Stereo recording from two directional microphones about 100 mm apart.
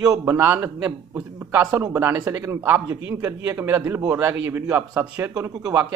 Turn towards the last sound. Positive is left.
turn(degrees=-30)  # may be behind; listen again after turning